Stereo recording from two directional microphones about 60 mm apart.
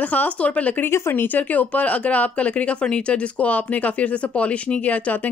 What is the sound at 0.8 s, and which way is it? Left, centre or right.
A woman's voice, left.